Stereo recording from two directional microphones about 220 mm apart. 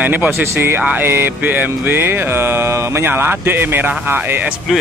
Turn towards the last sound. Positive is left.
turn(degrees=-5)  # may be behind; listen again after turning